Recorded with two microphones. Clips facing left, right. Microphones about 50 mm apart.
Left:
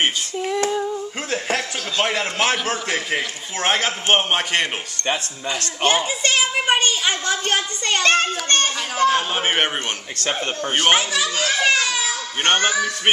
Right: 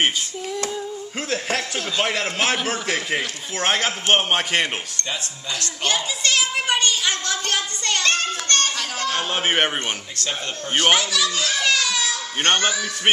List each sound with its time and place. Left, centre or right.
0.4 s female singing: left
1.3 s a man's voice: centre
5.5 s speech: left
9.1 s a man's voice: centre
10.8 s speech: left